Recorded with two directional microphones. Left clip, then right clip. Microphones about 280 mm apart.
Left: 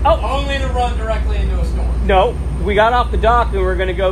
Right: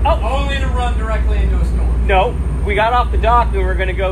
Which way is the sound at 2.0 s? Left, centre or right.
Left.